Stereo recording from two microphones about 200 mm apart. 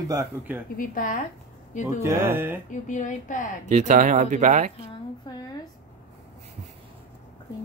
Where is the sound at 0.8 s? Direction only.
40° left (ahead or behind).